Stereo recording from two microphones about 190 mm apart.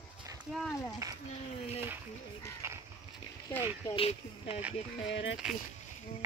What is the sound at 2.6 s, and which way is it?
Livestock, 15° right (ahead or behind).